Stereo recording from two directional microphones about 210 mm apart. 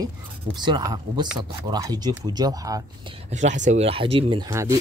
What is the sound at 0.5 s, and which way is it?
Speech, 20° right (ahead or behind).